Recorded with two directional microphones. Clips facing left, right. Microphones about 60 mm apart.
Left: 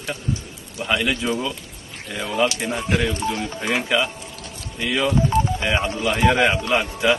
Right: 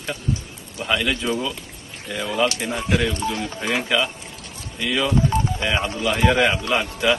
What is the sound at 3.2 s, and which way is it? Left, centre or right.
Speech, left.